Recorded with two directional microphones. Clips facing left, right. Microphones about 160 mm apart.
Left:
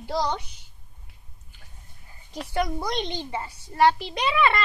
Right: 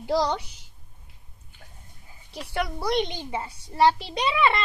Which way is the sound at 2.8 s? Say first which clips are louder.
Right 3 dB; 10° right (ahead or behind).